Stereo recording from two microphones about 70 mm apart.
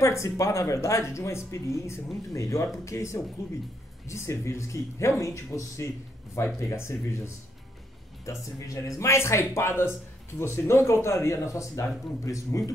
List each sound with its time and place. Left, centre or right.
0.0 s speech: left